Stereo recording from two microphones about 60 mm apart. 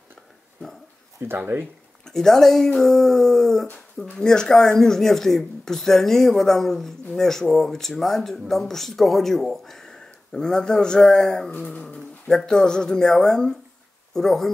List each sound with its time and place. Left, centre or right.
1.2 s speech: right
2.0 s speech: centre
11.8 s a sound: centre
12.4 s speech: centre